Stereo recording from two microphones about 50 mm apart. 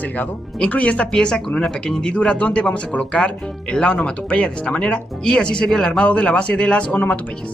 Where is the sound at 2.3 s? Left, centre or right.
Left.